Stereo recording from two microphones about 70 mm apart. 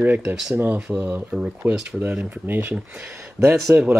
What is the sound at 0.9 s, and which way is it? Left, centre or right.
Speech, centre.